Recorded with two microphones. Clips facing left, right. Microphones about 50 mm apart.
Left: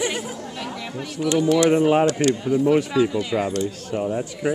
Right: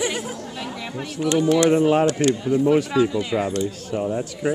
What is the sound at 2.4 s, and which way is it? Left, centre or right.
Speech, centre.